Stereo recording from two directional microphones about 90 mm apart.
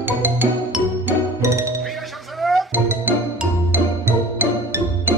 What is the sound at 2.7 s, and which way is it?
Music, 25° right (ahead or behind).